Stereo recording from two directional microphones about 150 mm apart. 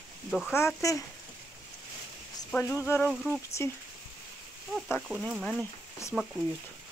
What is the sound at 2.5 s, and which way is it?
Speech, 15° left (ahead or behind).